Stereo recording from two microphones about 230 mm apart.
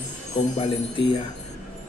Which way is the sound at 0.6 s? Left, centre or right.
Left.